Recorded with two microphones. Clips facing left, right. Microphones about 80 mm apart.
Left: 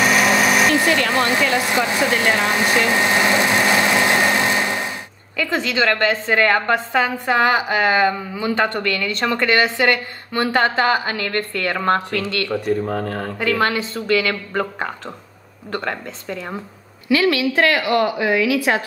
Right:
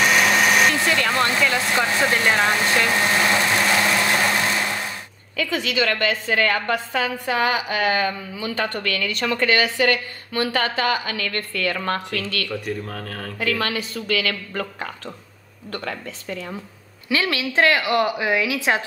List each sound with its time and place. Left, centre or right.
0.0 s a sound: centre
0.7 s a sound: left
1.1 s vehicle: left
1.6 s speech: centre
2.5 s vehicle: centre
5.5 s a woman's voice: left
17.1 s a woman's voice: right